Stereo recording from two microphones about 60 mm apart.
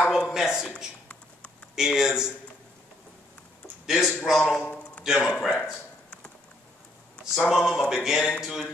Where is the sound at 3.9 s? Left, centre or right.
Centre.